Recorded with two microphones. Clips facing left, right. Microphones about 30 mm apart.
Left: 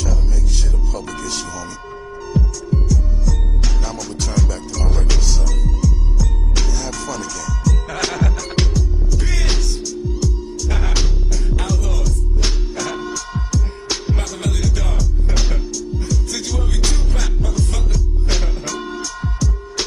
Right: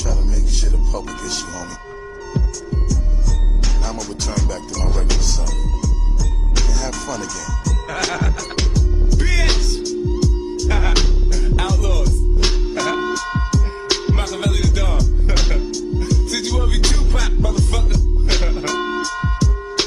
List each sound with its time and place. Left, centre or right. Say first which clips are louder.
0.9 s music: even; centre
9.1 s music: right 4 dB; right
11.4 s music: right 5 dB; right
11.7 s music: right 2 dB; right
14.4 s music: right 2 dB; right
15.7 s music: right 3 dB; right
16.5 s music: right 2 dB; right
18.7 s music: right 6 dB; right